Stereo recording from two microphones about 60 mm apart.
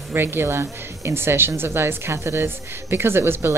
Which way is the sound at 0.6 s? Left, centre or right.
Right.